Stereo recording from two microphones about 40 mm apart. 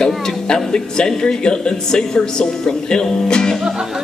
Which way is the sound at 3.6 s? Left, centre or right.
Centre.